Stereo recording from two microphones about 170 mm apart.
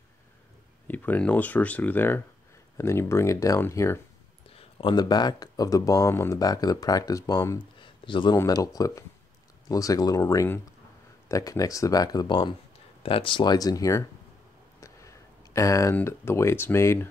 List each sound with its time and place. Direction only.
0.8 s speech: 10° left (ahead or behind)
4.5 s speech: 35° left (ahead or behind)
7.8 s a sound: 30° left (ahead or behind)
8.4 s speech: 20° left (ahead or behind)